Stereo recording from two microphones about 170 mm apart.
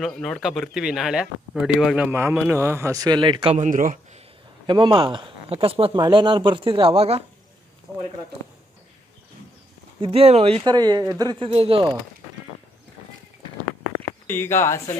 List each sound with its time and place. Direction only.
0.0 s speech: 5° left (ahead or behind); by 3.5 s 30° right (ahead or behind)
3.5 s speech: 50° right (ahead or behind)
4.6 s speech: 30° right (ahead or behind)
9.9 s speech: 35° right (ahead or behind)
10.6 s speech: 25° right (ahead or behind)
14.2 s speech: 15° left (ahead or behind)